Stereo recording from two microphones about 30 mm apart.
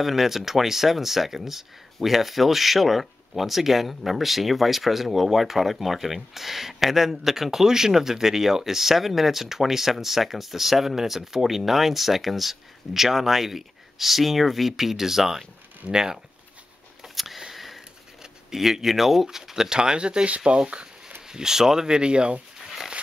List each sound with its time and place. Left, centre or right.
0.0 s speech: centre
15.9 s speech: right
17.0 s a sound: centre
18.5 s speech: centre
19.8 s speech: right
20.2 s speech: right
20.5 s speech: right
21.3 s speech: centre; by 22.4 s right